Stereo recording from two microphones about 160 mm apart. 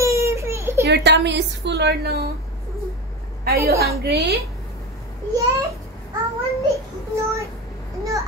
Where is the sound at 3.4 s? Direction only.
75° right (ahead or behind).